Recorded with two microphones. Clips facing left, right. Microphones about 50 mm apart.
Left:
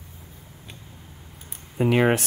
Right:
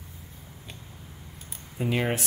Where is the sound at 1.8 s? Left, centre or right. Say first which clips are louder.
Left 8 dB; left.